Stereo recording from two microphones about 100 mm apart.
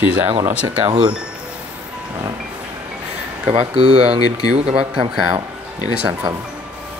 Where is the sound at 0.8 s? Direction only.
75° right (ahead or behind).